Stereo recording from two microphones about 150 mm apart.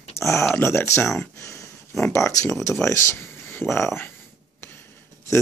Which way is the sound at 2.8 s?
20° left (ahead or behind).